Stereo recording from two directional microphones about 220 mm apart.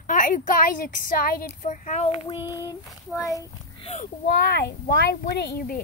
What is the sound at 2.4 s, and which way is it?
Child singing, 15° left (ahead or behind).